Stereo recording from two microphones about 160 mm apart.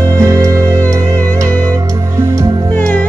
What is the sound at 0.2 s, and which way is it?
Music, 20° right (ahead or behind).